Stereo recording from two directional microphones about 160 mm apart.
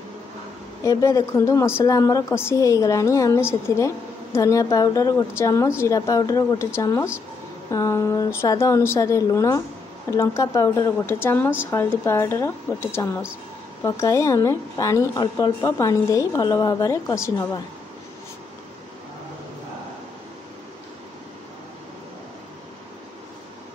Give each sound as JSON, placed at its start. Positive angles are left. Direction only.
{"t": 0.8, "sound": "a woman's voice", "side_deg": 20}